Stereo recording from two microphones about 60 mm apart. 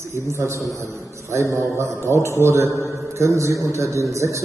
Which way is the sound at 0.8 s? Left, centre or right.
Right.